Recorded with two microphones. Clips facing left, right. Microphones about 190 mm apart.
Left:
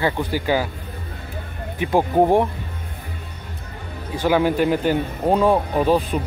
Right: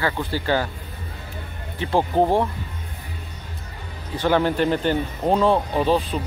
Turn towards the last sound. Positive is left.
turn(degrees=10)  # may be behind; listen again after turning